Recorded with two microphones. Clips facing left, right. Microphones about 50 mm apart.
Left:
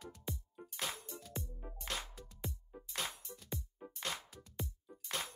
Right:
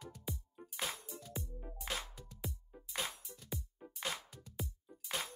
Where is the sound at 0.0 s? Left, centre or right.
Centre.